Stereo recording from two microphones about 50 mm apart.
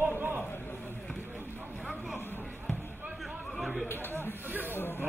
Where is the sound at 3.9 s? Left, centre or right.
Left.